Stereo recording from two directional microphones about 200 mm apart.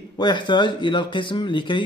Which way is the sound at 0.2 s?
25° left (ahead or behind).